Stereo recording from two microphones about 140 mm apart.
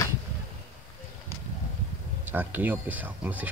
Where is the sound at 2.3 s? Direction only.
15° right (ahead or behind).